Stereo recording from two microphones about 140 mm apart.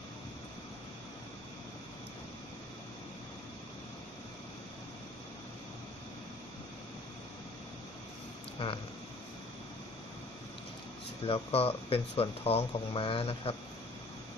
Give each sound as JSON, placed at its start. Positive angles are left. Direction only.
{"t": 8.6, "sound": "speech", "side_deg": 40}
{"t": 11.2, "sound": "speech", "side_deg": 45}